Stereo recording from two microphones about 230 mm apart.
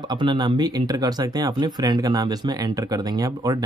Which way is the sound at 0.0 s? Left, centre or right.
Centre.